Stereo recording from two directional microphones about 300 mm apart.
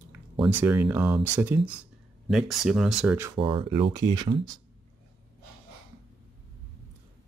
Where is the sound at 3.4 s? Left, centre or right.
Centre.